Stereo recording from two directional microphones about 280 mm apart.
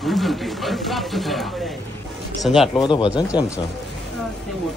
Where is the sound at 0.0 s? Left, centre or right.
Centre.